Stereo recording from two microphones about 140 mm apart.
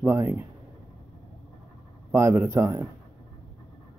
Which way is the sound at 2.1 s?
15° right (ahead or behind).